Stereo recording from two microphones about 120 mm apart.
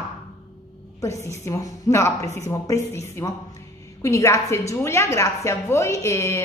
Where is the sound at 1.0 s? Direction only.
25° left (ahead or behind).